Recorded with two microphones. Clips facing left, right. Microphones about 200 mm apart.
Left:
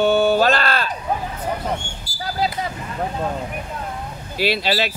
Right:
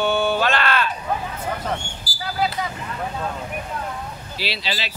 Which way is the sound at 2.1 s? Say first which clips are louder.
Left 3 dB; 30° right (ahead or behind).